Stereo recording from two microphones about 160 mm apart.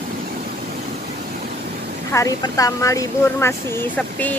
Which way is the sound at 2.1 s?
20° left (ahead or behind).